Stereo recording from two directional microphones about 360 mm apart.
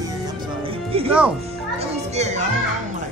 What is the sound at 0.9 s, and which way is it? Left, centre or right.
A child's voice, centre.